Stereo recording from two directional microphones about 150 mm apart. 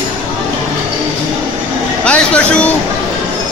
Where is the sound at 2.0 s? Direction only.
10° left (ahead or behind).